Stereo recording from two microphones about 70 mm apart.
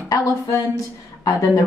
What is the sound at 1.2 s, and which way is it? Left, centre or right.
Speech, left.